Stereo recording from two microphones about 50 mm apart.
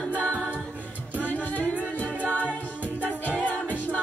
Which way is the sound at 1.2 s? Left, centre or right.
Left.